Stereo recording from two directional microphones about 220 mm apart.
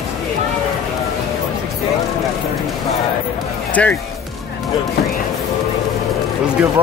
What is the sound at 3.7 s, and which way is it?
Speech, 5° left (ahead or behind).